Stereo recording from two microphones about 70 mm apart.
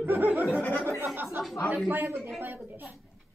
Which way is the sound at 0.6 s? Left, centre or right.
Left.